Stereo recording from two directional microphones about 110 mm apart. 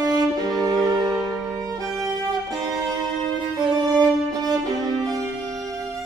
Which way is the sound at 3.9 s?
35° right (ahead or behind).